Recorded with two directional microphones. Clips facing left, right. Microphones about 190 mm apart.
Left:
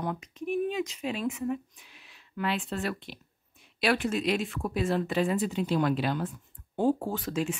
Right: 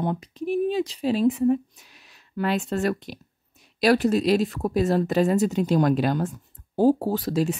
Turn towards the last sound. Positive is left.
turn(degrees=-35)  # may be behind; listen again after turning